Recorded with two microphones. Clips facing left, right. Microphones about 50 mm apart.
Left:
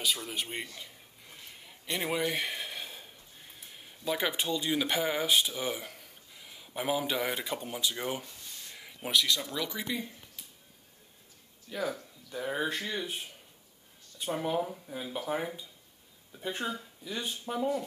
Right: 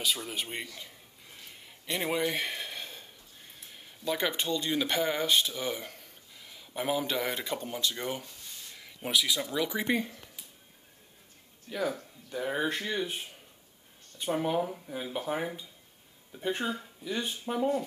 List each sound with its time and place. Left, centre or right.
0.0 s speech: centre
0.7 s a sound: centre
9.1 s speech: centre
11.7 s speech: centre
16.3 s speech: centre
17.0 s speech: centre